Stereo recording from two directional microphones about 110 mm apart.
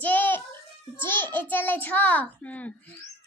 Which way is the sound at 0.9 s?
20° left (ahead or behind).